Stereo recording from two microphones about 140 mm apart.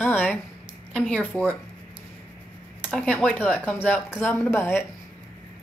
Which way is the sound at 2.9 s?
10° left (ahead or behind).